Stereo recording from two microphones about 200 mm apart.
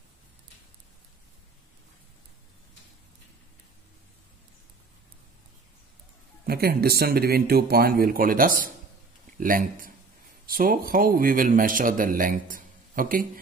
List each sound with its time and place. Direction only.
6.4 s speech: 50° right (ahead or behind)